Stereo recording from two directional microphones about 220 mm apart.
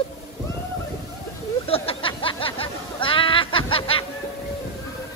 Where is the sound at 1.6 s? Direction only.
25° left (ahead or behind).